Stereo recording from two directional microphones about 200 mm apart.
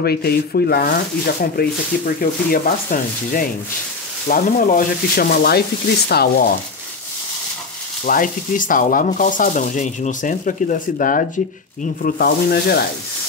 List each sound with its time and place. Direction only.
0.0 s sanding: 50° left (ahead or behind)
8.0 s sanding: 45° left (ahead or behind)